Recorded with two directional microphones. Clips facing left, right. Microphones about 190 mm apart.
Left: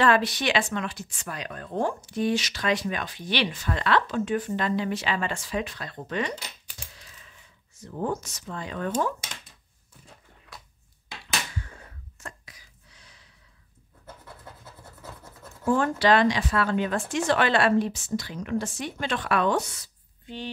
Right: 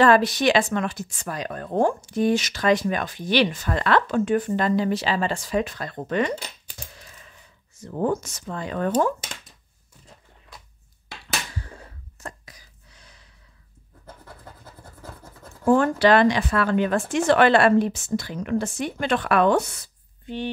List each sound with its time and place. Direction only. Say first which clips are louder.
0.0 s speech: right 5 dB; 45° right (ahead or behind)
4.5 s speech: right 5 dB; 40° right (ahead or behind)
8.0 s speech: right 5 dB; 50° right (ahead or behind)
12.2 s whispering: right 5 dB; 40° right (ahead or behind)
15.6 s a woman's voice: right 5 dB; 55° right (ahead or behind)